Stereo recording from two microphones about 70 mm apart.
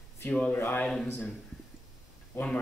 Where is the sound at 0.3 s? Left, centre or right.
Left.